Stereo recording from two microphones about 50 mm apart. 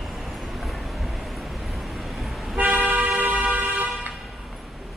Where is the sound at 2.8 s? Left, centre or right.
Right.